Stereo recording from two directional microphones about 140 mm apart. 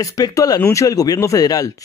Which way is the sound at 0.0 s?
25° left (ahead or behind).